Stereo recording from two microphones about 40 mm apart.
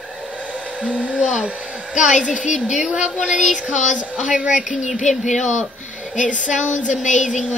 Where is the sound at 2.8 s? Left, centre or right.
Centre.